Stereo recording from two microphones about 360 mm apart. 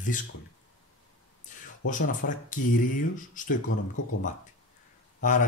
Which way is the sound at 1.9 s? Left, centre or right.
Left.